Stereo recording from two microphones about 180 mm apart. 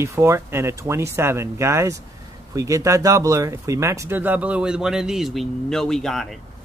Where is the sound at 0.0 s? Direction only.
15° right (ahead or behind).